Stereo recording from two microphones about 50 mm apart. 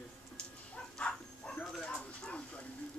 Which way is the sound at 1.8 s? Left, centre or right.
Left.